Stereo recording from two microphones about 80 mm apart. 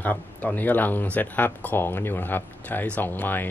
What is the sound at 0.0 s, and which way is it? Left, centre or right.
Speech, left.